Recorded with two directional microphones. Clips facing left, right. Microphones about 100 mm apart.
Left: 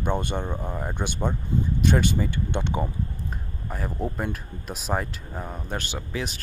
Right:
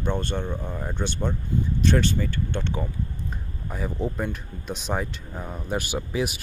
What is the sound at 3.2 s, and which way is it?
Speech, centre (ahead or behind).